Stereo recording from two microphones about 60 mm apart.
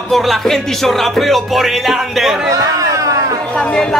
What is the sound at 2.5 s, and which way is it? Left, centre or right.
Chatter, right.